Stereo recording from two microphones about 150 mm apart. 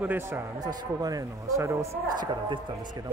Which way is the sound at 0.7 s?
25° right (ahead or behind).